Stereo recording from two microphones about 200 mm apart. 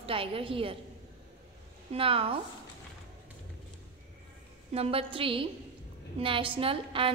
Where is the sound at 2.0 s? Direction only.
30° right (ahead or behind).